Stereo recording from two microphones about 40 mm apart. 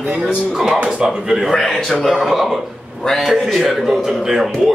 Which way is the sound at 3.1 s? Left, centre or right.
Centre.